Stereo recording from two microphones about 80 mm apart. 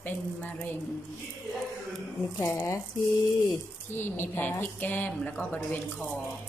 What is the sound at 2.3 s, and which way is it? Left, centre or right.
Speech, left.